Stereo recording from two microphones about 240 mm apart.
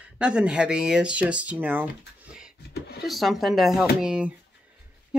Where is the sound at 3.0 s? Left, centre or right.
Centre.